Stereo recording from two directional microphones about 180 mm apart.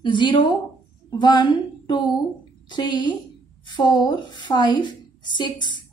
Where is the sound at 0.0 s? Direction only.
25° left (ahead or behind).